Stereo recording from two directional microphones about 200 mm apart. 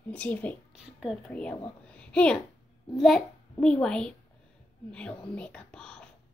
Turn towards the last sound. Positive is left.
turn(degrees=5)  # may be behind; listen again after turning